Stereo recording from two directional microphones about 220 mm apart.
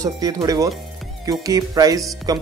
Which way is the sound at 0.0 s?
15° right (ahead or behind).